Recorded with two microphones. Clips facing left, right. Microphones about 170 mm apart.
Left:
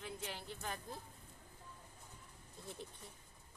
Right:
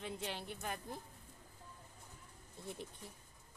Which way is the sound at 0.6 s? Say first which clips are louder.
Right 2 dB; 15° right (ahead or behind).